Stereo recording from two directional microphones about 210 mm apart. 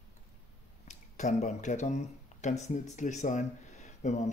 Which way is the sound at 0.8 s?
35° left (ahead or behind).